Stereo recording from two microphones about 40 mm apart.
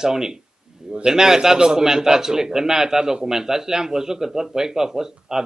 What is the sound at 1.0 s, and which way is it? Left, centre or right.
A man's voice, centre.